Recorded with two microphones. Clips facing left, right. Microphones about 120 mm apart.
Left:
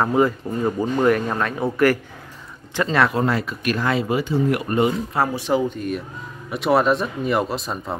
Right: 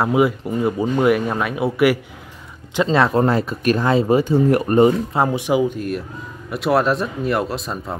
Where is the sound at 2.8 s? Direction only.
25° right (ahead or behind).